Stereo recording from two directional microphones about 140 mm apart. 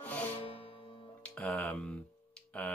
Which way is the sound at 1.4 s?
10° left (ahead or behind).